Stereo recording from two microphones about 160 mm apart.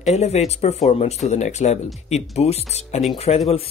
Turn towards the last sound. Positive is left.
turn(degrees=40)  # may be behind; listen again after turning